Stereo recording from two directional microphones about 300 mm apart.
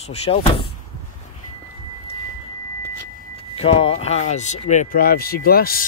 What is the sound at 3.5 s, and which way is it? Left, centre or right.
Speech, centre.